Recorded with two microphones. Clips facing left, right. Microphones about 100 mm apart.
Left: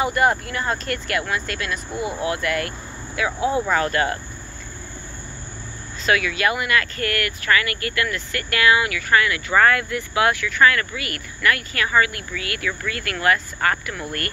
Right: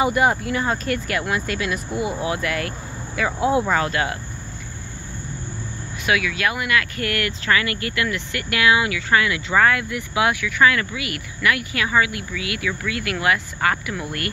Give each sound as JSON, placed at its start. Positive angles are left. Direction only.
{"t": 0.0, "sound": "speech", "side_deg": -5}
{"t": 6.0, "sound": "speech", "side_deg": 0}
{"t": 7.0, "sound": "speech", "side_deg": -20}